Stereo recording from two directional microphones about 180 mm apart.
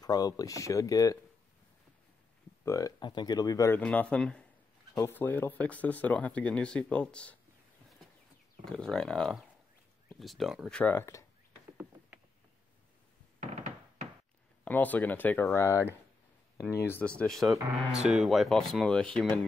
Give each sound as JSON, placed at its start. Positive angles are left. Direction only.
{"t": 0.0, "sound": "speech", "side_deg": 20}
{"t": 2.6, "sound": "speech", "side_deg": 20}
{"t": 3.8, "sound": "speech", "side_deg": 5}
{"t": 8.6, "sound": "speech", "side_deg": 5}
{"t": 11.7, "sound": "rowboat", "side_deg": -10}
{"t": 13.4, "sound": "a sound", "side_deg": -45}
{"t": 14.6, "sound": "speech", "side_deg": 10}
{"t": 17.2, "sound": "speech", "side_deg": 0}